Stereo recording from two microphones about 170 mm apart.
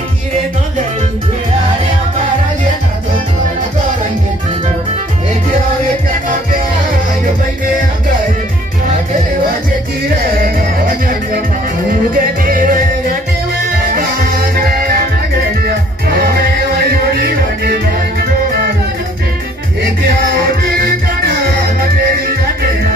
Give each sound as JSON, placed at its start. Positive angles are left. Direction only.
{"t": 10.4, "sound": "music", "side_deg": -55}
{"t": 16.2, "sound": "music", "side_deg": -65}
{"t": 20.3, "sound": "music", "side_deg": -65}